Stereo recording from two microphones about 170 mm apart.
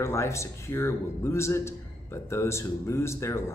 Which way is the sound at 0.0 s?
15° left (ahead or behind).